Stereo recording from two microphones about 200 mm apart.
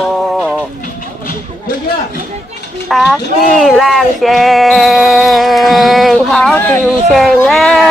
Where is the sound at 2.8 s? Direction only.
Centre (ahead or behind).